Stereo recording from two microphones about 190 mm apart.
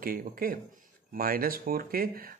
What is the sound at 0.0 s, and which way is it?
Speech, 50° right (ahead or behind).